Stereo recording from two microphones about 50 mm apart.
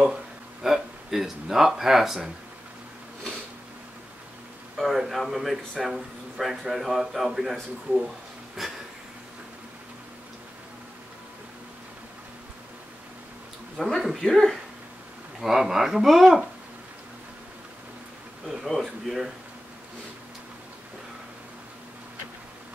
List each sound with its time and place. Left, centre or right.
0.0 s a sound: centre
4.7 s speech: centre
8.6 s speech: centre
13.7 s speech: centre
15.4 s speech: centre
18.8 s speech: centre